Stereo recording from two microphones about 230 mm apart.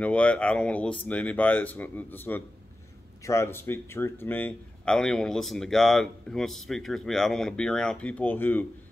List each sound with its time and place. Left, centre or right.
0.0 s speech: centre